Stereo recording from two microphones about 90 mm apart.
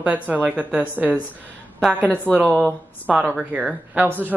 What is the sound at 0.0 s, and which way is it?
Speech, 15° right (ahead or behind).